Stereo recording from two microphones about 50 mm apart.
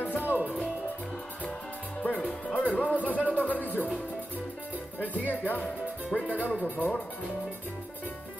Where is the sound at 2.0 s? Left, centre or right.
Left.